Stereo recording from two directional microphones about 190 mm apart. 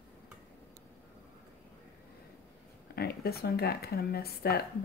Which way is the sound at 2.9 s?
55° left (ahead or behind).